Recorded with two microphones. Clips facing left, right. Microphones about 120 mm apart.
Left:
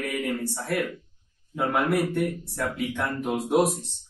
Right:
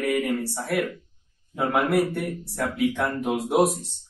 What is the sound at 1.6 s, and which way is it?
Speech, 15° right (ahead or behind).